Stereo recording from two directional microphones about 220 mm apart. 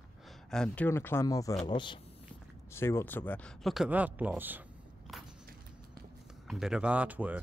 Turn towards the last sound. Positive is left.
turn(degrees=-5)  # may be behind; listen again after turning